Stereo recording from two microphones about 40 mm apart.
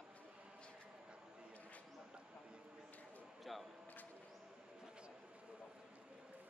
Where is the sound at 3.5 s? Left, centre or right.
Centre.